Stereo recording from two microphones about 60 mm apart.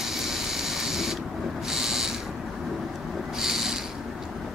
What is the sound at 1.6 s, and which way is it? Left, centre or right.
Owl, centre.